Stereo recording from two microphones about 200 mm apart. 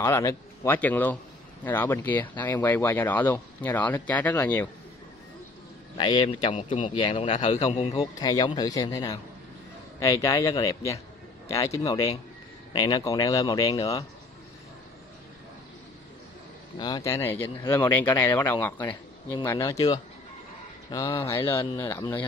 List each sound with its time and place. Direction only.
0.0 s speech: 15° left (ahead or behind)
5.9 s a man's voice: 25° left (ahead or behind)
7.9 s a man's voice: 20° left (ahead or behind)
16.7 s speech: 20° left (ahead or behind)